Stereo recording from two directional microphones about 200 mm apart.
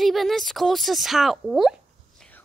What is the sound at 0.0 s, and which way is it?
A woman's voice, centre (ahead or behind).